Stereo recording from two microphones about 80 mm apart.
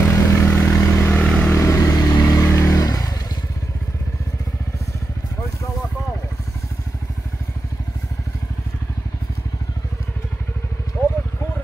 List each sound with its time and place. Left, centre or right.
0.0 s vehicle: left
1.2 s vehicle: centre
1.5 s vehicle: left